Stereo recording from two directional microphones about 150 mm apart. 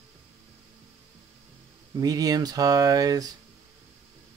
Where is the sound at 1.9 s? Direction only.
25° right (ahead or behind).